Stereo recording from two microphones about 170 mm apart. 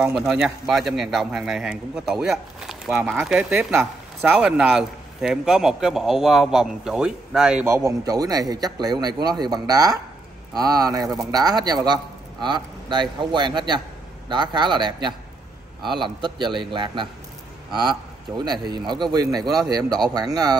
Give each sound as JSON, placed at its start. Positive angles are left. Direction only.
{"t": 0.0, "sound": "a man's voice", "side_deg": -5}